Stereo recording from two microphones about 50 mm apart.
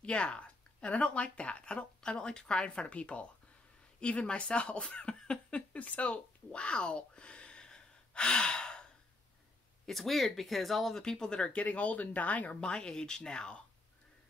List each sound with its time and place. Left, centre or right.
0.0 s speech: left
9.8 s speech: centre; by 12.5 s left
12.5 s speech: centre